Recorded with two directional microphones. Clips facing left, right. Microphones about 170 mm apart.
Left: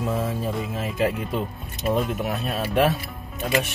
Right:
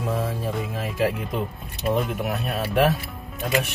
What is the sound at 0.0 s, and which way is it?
Music, centre (ahead or behind).